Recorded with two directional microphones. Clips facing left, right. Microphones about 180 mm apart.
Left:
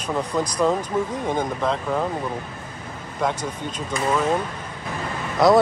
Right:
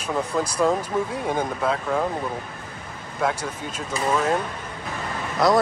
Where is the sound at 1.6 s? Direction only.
5° right (ahead or behind).